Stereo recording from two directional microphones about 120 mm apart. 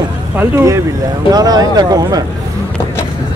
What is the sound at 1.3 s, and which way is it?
Speech, 30° right (ahead or behind).